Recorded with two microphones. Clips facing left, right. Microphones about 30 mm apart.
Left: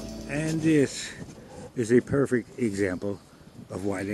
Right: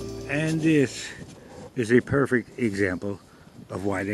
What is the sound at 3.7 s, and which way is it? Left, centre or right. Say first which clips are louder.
Speech: right 2 dB; right.